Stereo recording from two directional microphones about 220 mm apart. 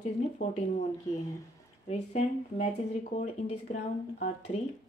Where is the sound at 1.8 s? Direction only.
30° left (ahead or behind).